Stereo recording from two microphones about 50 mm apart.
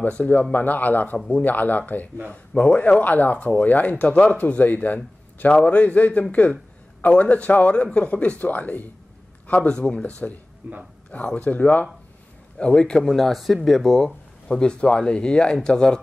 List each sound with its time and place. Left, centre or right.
0.1 s a man's voice: left
1.1 s a man's voice: left
1.4 s a man's voice: left
9.7 s a man's voice: centre
10.6 s speech: right
11.1 s a man's voice: left
12.5 s a man's voice: left
13.0 s speech: centre
14.5 s speech: centre